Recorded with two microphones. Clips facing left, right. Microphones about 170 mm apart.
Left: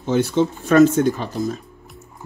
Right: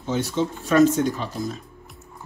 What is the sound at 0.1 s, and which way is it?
Speech, 60° left (ahead or behind).